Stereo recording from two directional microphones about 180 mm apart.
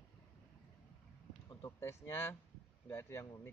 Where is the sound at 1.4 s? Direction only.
15° left (ahead or behind).